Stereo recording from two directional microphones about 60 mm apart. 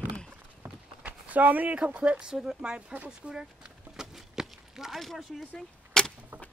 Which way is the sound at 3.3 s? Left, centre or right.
Centre.